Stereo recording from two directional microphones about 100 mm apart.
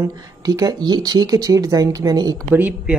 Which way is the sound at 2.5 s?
15° right (ahead or behind).